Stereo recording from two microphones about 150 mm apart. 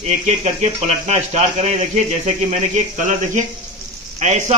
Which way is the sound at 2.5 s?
55° right (ahead or behind).